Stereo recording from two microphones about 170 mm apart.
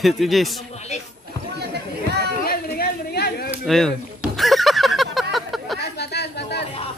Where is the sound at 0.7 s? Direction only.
40° left (ahead or behind).